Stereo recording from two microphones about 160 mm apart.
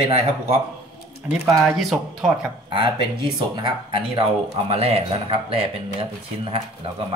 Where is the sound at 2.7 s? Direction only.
30° right (ahead or behind).